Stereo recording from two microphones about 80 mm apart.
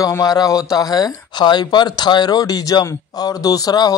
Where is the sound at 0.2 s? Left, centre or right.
Left.